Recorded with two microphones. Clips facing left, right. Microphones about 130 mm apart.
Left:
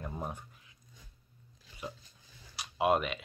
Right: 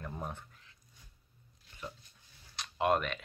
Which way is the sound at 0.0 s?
10° left (ahead or behind).